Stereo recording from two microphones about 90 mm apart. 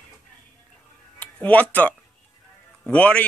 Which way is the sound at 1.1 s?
15° left (ahead or behind).